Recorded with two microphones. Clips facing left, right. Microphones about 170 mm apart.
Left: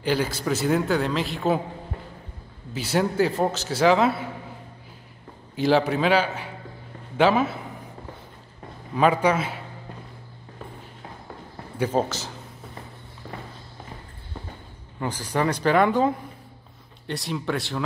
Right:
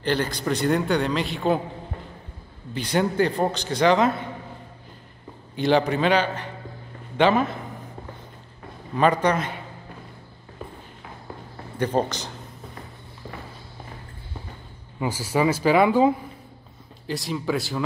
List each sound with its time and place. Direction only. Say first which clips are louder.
0.0 s a man's voice: even; 5° left (ahead or behind)
2.7 s a man's voice: right 1 dB; 5° left (ahead or behind)
5.6 s a man's voice: even; 5° left (ahead or behind)
8.9 s a man's voice: even; 5° left (ahead or behind)
11.8 s a man's voice: even; 5° left (ahead or behind)
15.0 s a man's voice: right 2 dB; 10° right (ahead or behind)